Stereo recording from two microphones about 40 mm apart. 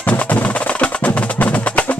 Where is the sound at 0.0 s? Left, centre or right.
Left.